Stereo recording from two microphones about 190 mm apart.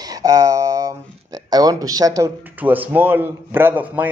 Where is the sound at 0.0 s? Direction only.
20° right (ahead or behind).